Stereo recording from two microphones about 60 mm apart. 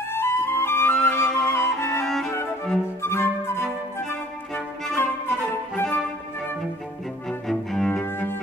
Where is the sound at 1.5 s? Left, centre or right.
Left.